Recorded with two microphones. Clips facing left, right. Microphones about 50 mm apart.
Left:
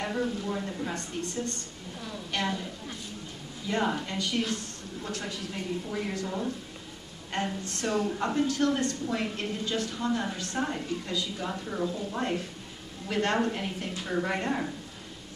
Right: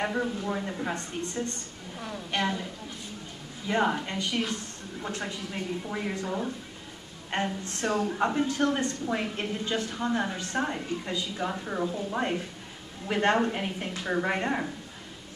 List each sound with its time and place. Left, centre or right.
0.0 s a woman's voice: centre
3.6 s a woman's voice: centre
7.6 s a woman's voice: right